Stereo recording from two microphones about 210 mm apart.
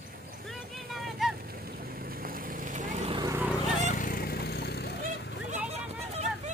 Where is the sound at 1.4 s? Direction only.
45° right (ahead or behind).